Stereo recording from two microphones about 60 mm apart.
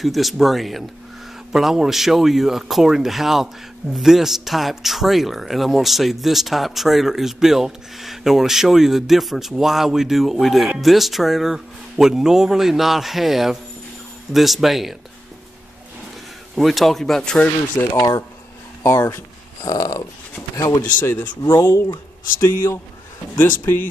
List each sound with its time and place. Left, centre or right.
0.0 s speech: centre
16.5 s speech: centre
17.9 s speech: left
18.9 s speech: left
19.6 s a sound: left
20.5 s speech: left
23.3 s speech: left